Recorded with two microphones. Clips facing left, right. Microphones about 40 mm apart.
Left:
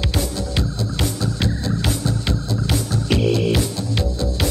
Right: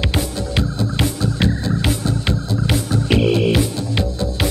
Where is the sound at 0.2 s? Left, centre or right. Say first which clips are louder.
Right 2 dB; centre.